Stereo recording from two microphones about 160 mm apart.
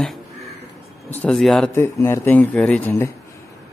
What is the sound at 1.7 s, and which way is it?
Speech, 15° left (ahead or behind).